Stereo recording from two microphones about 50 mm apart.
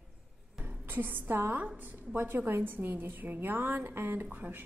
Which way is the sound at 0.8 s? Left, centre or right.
Right.